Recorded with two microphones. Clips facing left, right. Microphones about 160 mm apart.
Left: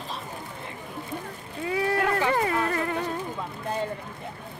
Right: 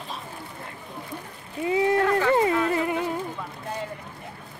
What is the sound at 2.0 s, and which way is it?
Speech, 15° left (ahead or behind).